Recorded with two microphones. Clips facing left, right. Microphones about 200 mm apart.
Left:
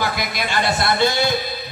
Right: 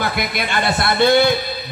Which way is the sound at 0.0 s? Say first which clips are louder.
Right 2 dB; 55° right (ahead or behind).